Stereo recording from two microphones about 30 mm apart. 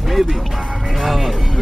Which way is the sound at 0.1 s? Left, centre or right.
Centre.